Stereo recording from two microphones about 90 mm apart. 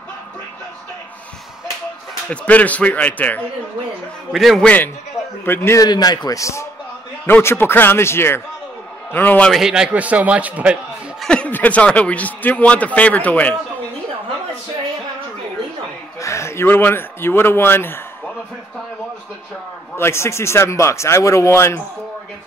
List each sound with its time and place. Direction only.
2.2 s a man's voice: 15° left (ahead or behind)
4.3 s a man's voice: centre (ahead or behind)
4.6 s speech: 20° left (ahead or behind)
5.8 s speech: 45° left (ahead or behind); by 9.5 s 20° left (ahead or behind)
9.5 s a man's voice: 5° right (ahead or behind)
11.2 s a man's voice: 15° left (ahead or behind)
16.2 s speech: 35° left (ahead or behind)
20.0 s speech: 30° left (ahead or behind)